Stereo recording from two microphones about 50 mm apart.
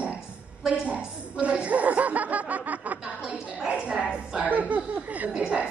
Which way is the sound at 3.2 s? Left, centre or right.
Right.